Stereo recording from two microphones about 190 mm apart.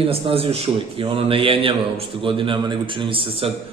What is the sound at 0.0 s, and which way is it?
A man's voice, 30° right (ahead or behind).